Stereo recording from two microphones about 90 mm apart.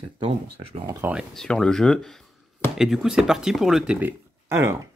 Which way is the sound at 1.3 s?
5° left (ahead or behind).